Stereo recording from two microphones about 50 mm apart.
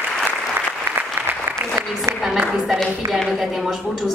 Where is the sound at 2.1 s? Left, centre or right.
Right.